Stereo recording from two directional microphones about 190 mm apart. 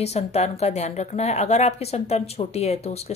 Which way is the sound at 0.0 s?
35° left (ahead or behind).